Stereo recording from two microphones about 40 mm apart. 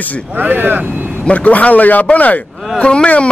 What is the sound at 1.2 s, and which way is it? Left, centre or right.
Speech, left.